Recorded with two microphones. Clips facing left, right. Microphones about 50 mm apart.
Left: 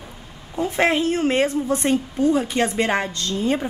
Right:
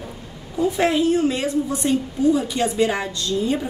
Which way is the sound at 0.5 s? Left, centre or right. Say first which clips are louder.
Right 1 dB; left.